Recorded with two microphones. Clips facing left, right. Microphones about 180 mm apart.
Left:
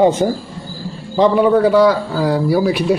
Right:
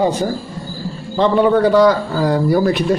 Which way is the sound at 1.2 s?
5° left (ahead or behind).